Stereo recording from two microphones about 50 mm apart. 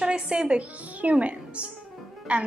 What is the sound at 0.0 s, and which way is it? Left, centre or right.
A woman's voice, centre.